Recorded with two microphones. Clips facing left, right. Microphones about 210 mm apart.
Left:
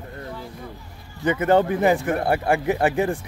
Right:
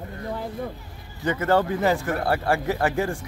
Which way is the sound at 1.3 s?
20° left (ahead or behind).